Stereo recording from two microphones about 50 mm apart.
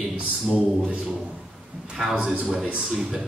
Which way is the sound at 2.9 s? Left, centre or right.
Centre.